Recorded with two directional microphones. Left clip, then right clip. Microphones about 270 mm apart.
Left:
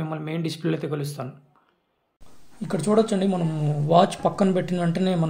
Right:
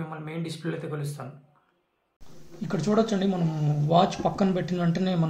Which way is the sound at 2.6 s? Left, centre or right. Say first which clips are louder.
Left 4 dB; centre.